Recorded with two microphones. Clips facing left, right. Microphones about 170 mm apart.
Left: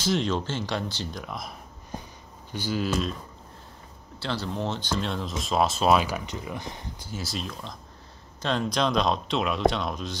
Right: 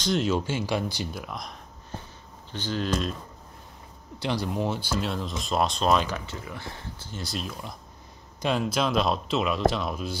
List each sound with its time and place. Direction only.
0.0 s speech: centre (ahead or behind)
4.2 s speech: 15° right (ahead or behind); by 7.2 s 15° left (ahead or behind)
7.2 s speech: centre (ahead or behind)